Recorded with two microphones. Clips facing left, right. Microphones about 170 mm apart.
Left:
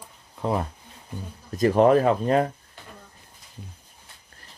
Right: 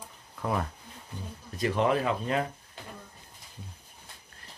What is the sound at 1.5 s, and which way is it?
Speech, 45° left (ahead or behind).